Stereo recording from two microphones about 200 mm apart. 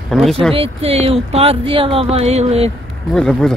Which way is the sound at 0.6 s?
30° right (ahead or behind).